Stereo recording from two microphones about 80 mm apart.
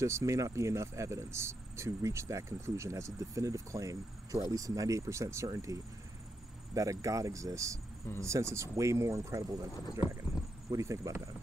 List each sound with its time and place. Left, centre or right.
0.0 s speech: right
10.7 s speech: right